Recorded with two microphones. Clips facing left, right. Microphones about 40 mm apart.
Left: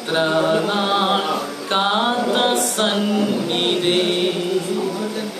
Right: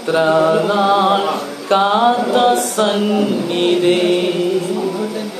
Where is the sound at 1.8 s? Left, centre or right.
Left.